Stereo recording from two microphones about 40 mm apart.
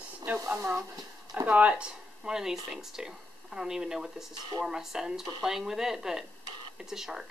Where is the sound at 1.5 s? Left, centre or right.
Right.